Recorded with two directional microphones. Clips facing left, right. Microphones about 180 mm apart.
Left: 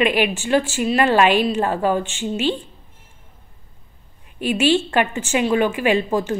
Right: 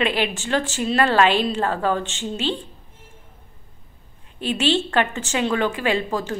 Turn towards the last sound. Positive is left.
turn(degrees=15)  # may be behind; listen again after turning